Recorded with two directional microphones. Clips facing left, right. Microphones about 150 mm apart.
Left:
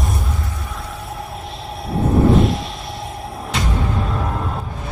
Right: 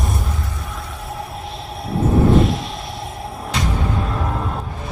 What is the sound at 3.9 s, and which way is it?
Music, centre (ahead or behind).